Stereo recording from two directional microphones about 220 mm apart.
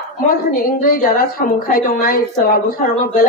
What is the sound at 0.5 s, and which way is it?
Speech, 40° left (ahead or behind).